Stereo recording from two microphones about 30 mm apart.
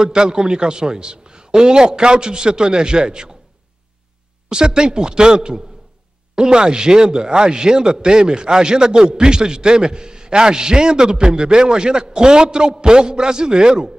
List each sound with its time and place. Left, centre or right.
0.0 s speech: right
4.5 s speech: right